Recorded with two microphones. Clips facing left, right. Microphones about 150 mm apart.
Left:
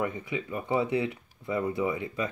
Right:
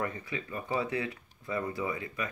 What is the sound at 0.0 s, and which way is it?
Speech, 15° left (ahead or behind).